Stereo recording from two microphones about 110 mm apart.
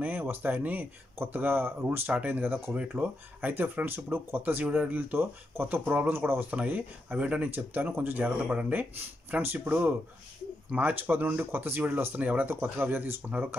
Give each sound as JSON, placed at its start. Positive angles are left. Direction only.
{"t": 0.0, "sound": "speech", "side_deg": -15}